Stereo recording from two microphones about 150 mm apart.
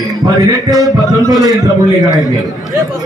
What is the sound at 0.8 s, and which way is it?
Music, 25° right (ahead or behind).